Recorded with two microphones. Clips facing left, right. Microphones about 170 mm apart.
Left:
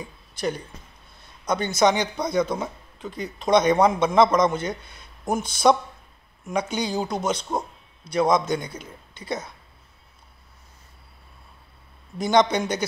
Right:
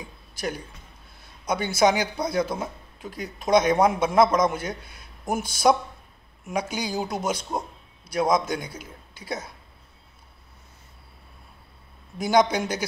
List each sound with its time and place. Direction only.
1.4 s a man's voice: 5° right (ahead or behind)
7.3 s a sound: 25° left (ahead or behind)
8.1 s speech: centre (ahead or behind)
12.2 s speech: 5° right (ahead or behind)